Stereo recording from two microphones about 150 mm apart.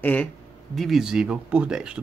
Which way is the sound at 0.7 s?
Centre (ahead or behind).